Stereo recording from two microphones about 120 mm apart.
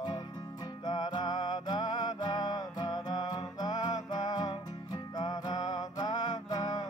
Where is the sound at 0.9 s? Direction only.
35° left (ahead or behind).